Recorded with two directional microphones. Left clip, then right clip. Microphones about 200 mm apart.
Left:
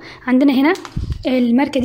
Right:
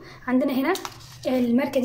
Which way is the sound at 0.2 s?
45° left (ahead or behind).